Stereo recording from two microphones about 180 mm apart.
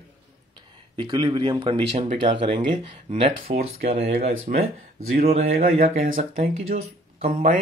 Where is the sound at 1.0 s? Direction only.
30° right (ahead or behind).